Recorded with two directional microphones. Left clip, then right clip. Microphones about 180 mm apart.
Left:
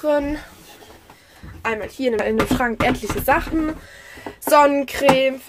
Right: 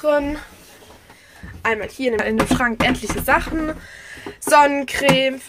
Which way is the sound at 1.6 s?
Centre (ahead or behind).